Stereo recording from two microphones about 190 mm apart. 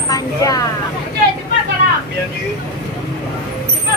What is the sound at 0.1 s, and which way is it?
Speech, 20° left (ahead or behind).